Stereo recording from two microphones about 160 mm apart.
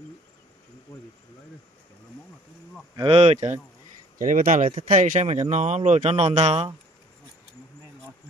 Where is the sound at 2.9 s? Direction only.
35° right (ahead or behind).